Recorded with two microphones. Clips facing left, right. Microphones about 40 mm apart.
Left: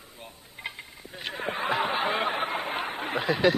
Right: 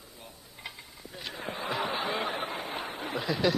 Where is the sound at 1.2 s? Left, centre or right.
Left.